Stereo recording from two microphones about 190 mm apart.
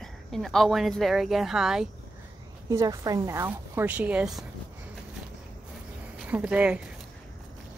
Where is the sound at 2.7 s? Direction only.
15° right (ahead or behind).